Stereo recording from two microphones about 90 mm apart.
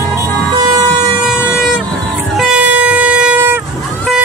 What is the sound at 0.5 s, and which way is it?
Vehicle, 45° right (ahead or behind).